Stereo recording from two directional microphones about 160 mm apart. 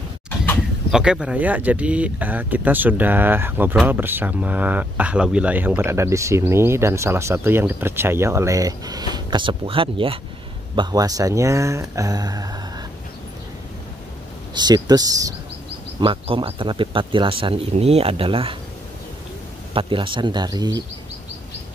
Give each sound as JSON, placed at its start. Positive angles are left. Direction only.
{"t": 0.6, "sound": "speech", "side_deg": -5}
{"t": 10.8, "sound": "speech", "side_deg": -25}
{"t": 14.5, "sound": "speech", "side_deg": -25}
{"t": 16.0, "sound": "speech", "side_deg": -35}
{"t": 19.7, "sound": "speech", "side_deg": -35}